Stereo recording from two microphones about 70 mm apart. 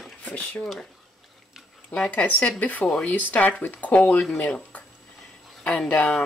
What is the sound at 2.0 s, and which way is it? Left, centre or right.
Speech, left.